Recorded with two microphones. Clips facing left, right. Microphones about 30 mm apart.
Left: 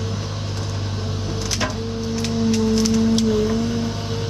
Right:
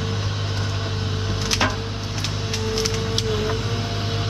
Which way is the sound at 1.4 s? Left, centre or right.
Right.